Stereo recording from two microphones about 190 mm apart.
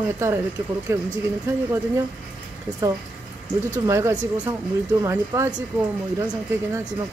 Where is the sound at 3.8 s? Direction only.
15° right (ahead or behind).